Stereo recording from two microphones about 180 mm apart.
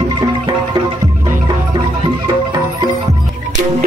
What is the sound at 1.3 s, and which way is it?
Music, 20° right (ahead or behind).